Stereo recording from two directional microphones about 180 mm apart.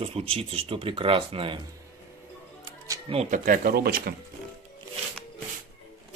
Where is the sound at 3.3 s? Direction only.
50° right (ahead or behind).